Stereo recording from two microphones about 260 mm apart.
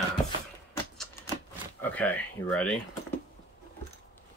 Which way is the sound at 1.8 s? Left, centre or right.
Centre.